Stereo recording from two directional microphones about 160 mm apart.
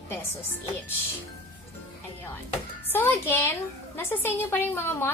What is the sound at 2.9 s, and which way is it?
A woman's voice, 15° left (ahead or behind).